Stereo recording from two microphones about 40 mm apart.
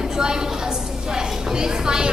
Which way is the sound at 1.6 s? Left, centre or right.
Centre.